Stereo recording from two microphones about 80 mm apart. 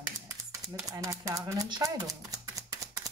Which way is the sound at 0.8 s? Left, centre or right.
Right.